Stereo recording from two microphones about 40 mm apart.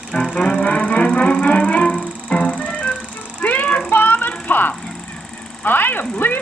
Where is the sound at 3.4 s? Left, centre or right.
Left.